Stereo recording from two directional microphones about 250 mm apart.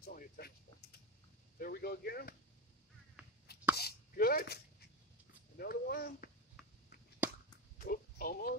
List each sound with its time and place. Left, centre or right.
0.0 s speech: left
3.7 s plop: left
5.6 s speech: left
6.6 s a sound: centre
7.8 s speech: left